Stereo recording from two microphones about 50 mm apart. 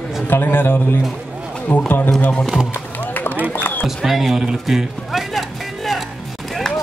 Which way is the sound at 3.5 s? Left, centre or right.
Left.